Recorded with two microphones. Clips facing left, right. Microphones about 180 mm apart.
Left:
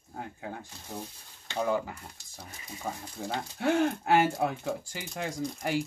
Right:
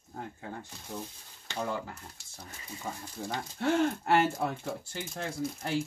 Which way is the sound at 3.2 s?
10° left (ahead or behind).